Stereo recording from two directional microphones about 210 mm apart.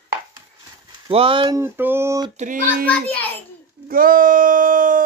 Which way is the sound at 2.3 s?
40° right (ahead or behind).